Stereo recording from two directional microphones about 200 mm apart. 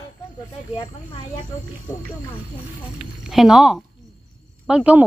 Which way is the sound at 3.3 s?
5° right (ahead or behind).